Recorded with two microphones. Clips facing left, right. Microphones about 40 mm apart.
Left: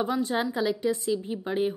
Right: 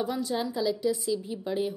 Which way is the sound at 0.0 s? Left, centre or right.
Left.